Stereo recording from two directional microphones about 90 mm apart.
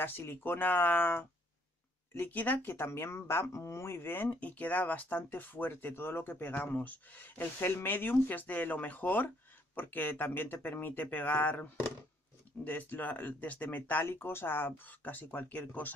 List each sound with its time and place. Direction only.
0.0 s speech: 25° left (ahead or behind)